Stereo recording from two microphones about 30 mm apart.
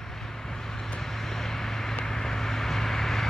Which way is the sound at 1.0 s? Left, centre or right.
Centre.